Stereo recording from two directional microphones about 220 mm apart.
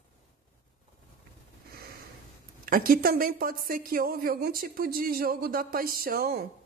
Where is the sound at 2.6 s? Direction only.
40° right (ahead or behind).